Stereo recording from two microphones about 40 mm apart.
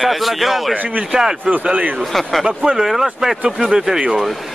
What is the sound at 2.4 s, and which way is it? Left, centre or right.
Speech, right.